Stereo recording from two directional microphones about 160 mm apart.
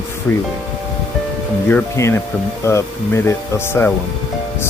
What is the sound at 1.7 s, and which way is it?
Speech, 15° left (ahead or behind).